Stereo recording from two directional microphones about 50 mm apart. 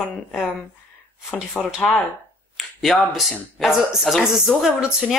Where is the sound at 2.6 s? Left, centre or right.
Centre.